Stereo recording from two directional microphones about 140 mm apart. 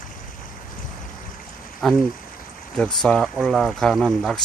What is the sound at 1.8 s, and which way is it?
Speech, centre (ahead or behind).